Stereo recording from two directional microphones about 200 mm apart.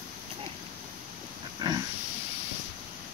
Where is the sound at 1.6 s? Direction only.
20° right (ahead or behind).